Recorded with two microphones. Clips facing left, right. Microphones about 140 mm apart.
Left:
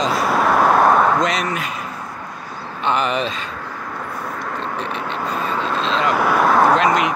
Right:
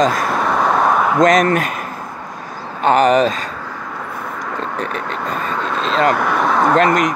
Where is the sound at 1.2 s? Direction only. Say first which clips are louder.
Right 8 dB; 50° right (ahead or behind).